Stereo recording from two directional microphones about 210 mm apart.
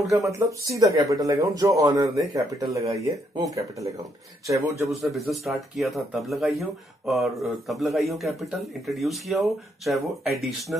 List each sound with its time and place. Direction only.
0.1 s speech: 15° right (ahead or behind)
4.8 s speech: centre (ahead or behind)